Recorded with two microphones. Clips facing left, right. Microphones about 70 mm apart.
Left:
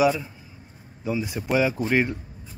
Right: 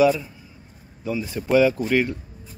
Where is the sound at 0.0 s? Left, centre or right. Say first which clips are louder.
Right 3 dB; centre.